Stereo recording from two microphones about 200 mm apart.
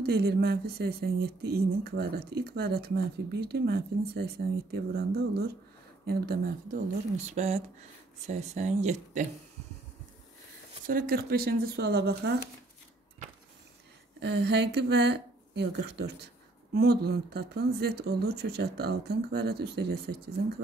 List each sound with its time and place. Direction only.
0.0 s speech: 50° right (ahead or behind)
7.2 s speech: 35° right (ahead or behind)
10.9 s speech: 45° right (ahead or behind)
14.2 s speech: 55° right (ahead or behind)